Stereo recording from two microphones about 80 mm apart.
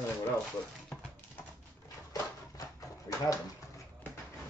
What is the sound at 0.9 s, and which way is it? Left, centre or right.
Dog, left.